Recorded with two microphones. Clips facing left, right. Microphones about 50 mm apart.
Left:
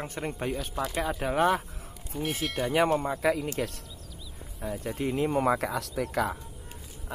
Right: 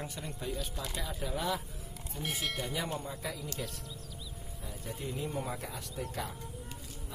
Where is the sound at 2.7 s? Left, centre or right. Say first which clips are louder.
Left 12 dB; left.